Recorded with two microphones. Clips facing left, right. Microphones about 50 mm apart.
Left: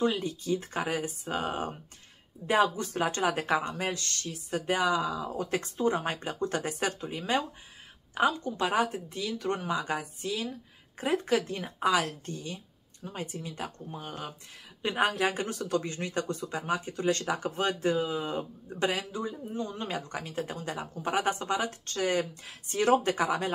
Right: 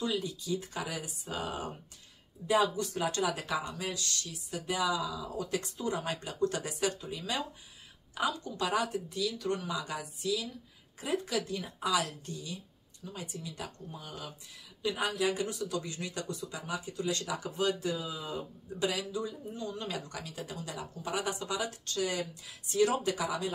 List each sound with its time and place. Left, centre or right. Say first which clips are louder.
0.0 s speech: left 5 dB; left